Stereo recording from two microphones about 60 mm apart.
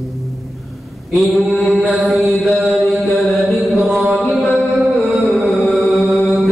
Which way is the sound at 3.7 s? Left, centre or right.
Centre.